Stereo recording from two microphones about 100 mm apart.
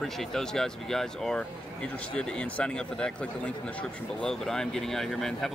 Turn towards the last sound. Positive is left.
turn(degrees=5)  # may be behind; listen again after turning